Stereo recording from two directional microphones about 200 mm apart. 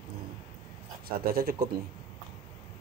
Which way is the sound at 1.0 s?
50° right (ahead or behind).